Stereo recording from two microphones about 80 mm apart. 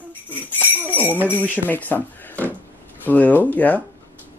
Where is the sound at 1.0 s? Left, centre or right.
Right.